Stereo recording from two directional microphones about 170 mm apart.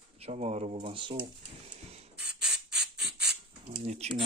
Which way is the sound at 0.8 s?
30° right (ahead or behind).